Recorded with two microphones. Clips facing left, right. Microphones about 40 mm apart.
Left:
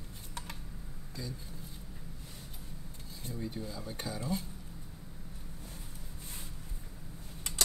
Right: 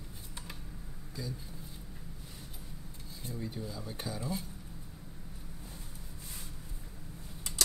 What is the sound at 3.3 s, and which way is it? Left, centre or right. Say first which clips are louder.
Speech: left 1 dB; centre.